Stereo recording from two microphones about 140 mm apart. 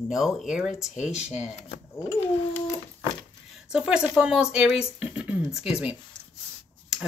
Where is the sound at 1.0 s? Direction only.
50° left (ahead or behind).